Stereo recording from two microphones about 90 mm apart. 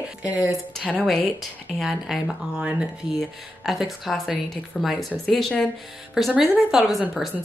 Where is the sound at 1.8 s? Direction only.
5° right (ahead or behind).